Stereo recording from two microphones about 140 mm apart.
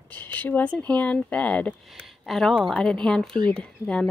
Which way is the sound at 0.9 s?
10° left (ahead or behind).